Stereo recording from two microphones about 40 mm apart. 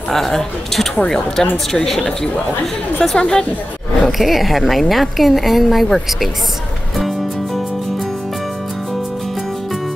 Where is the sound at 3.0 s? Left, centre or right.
Centre.